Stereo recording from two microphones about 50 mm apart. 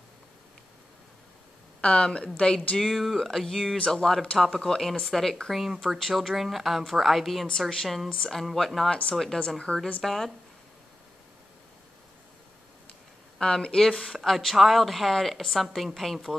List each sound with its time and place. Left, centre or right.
1.8 s a woman's voice: left
2.8 s a woman's voice: centre
3.7 s a woman's voice: centre
10.0 s a woman's voice: centre
13.4 s a woman's voice: centre